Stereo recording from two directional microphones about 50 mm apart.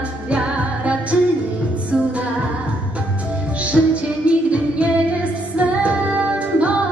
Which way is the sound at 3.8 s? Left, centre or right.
Centre.